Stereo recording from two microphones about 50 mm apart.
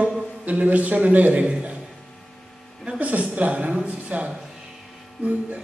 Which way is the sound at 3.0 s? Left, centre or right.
Right.